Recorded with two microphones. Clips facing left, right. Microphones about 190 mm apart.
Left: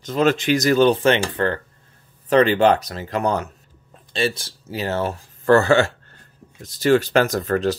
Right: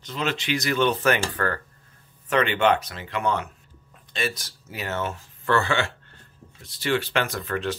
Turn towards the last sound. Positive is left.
turn(degrees=40)  # may be behind; listen again after turning